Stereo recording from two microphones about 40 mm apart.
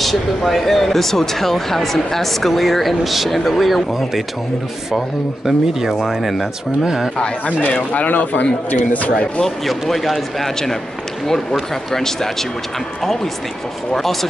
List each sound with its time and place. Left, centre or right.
0.0 s speech: centre
6.8 s speech: centre
7.4 s speech: left
9.7 s speech: centre